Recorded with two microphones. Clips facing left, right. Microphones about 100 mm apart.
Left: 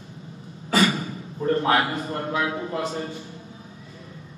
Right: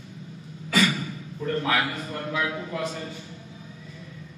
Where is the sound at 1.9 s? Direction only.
30° left (ahead or behind).